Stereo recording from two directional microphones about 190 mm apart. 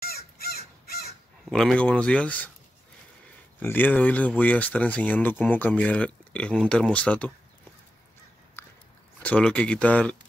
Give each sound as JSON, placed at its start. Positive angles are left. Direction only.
{"t": 0.0, "sound": "crow", "side_deg": 55}
{"t": 1.4, "sound": "speech", "side_deg": 0}
{"t": 3.5, "sound": "speech", "side_deg": 10}
{"t": 8.6, "sound": "biting", "side_deg": 10}
{"t": 9.2, "sound": "speech", "side_deg": 5}